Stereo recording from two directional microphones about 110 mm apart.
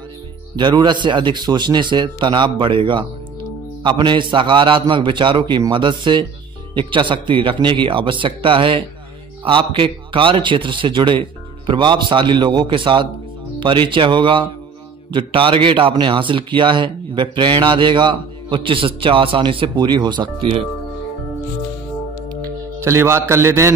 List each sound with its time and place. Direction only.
0.6 s a man's voice: 45° right (ahead or behind)
22.3 s music: 30° right (ahead or behind)